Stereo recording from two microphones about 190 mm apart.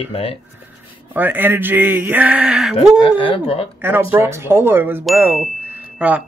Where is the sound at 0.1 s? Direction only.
30° left (ahead or behind).